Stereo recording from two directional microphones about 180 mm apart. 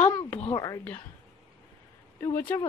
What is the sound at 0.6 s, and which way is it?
Speech, 15° left (ahead or behind).